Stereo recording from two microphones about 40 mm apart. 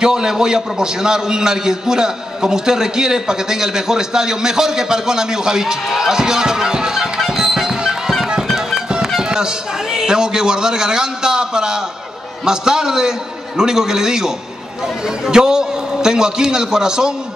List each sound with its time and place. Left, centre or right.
0.0 s a man's voice: centre
7.2 s music: centre
9.2 s a man's voice: centre